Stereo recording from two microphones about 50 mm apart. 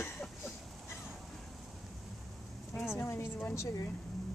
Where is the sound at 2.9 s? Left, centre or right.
Left.